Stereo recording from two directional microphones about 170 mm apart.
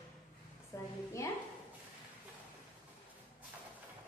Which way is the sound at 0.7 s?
20° left (ahead or behind).